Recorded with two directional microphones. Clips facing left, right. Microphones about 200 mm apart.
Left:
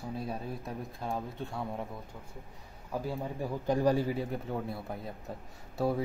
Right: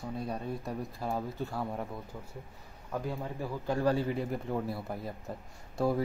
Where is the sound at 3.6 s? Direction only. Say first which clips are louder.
Left 2 dB; 15° left (ahead or behind).